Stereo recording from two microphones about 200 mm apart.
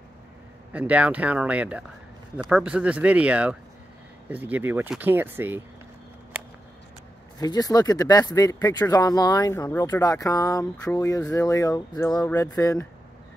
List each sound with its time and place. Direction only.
0.7 s speech: 5° right (ahead or behind)
7.3 s speech: 20° left (ahead or behind)